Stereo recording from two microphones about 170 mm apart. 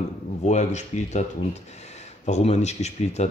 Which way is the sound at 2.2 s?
40° left (ahead or behind).